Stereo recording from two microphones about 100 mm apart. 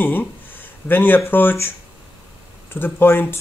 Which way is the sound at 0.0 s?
20° left (ahead or behind).